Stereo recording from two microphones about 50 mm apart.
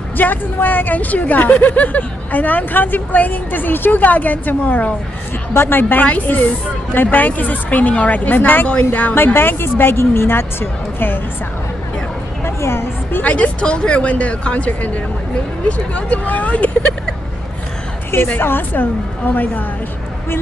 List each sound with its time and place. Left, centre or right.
0.2 s speech: left
5.5 s speech: left
9.1 s speech: left
12.4 s a sound: left
13.2 s speech: left
15.9 s speech: left
18.4 s speech: left